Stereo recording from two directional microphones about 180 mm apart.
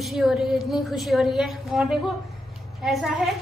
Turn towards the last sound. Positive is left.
turn(degrees=0)  # may be behind; listen again after turning